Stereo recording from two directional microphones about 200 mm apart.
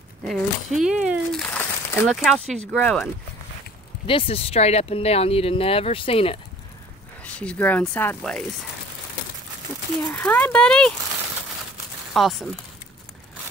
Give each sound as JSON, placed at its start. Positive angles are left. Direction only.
{"t": 0.3, "sound": "speech", "side_deg": 0}
{"t": 1.5, "sound": "crumpling", "side_deg": 5}
{"t": 2.7, "sound": "speech", "side_deg": 5}
{"t": 4.1, "sound": "speech", "side_deg": 30}
{"t": 7.2, "sound": "speech", "side_deg": 5}
{"t": 10.1, "sound": "speech", "side_deg": 5}
{"t": 12.1, "sound": "speech", "side_deg": 0}